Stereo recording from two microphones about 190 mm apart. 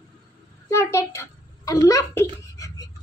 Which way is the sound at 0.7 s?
15° left (ahead or behind).